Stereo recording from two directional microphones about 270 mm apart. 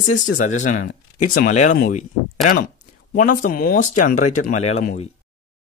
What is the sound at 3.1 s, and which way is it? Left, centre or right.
Speech, left.